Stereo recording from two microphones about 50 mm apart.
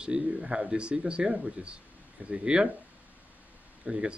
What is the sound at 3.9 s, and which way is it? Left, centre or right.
Speech, centre.